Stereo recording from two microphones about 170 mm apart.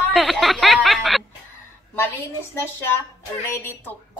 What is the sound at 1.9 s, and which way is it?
Speech, 15° left (ahead or behind).